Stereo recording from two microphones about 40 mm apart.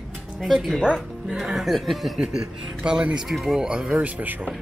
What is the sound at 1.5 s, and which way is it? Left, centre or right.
Speech, centre.